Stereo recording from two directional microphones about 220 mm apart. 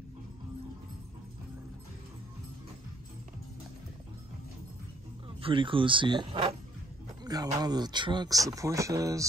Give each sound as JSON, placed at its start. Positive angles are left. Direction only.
{"t": 5.4, "sound": "speech", "side_deg": -25}